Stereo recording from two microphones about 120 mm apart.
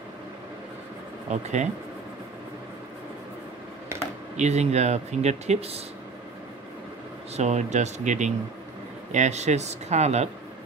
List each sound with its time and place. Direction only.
1.3 s speech: 70° right (ahead or behind)
3.9 s computer keyboard: 20° right (ahead or behind)
4.4 s speech: 65° right (ahead or behind)
7.3 s speech: 70° right (ahead or behind); by 8.3 s 85° right
9.1 s speech: 75° right (ahead or behind)